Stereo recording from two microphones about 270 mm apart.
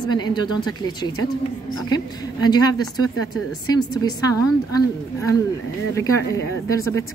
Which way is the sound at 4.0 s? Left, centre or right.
Centre.